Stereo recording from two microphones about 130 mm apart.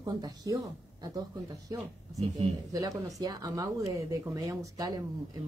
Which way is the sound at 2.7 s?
25° right (ahead or behind).